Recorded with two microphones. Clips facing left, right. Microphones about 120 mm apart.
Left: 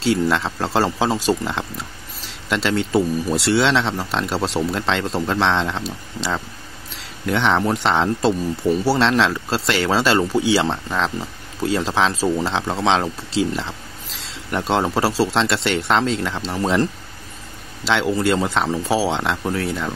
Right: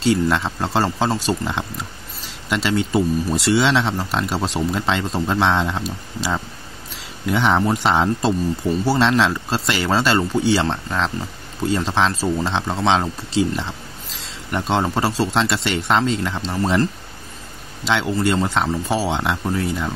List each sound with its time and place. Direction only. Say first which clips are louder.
0.0 s speech: right 1 dB; centre (ahead or behind)
17.8 s speech: left 1 dB; centre (ahead or behind)